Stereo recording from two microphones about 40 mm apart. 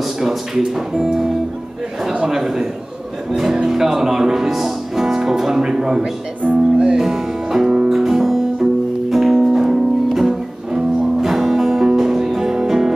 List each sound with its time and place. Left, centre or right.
0.0 s a sound: centre
0.7 s speech: centre
6.4 s speech: right
7.0 s music: centre